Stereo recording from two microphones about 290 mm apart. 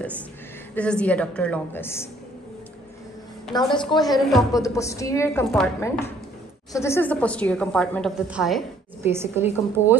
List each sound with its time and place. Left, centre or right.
0.7 s a woman's voice: centre
3.5 s a woman's voice: centre
4.3 s a woman's voice: centre
4.6 s a woman's voice: centre